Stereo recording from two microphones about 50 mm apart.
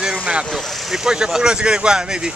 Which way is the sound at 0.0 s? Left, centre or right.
Centre.